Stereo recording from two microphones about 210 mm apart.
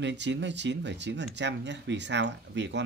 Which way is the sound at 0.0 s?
55° right (ahead or behind).